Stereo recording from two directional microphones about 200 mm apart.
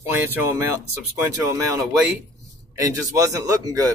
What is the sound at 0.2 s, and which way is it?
Speech, 10° right (ahead or behind).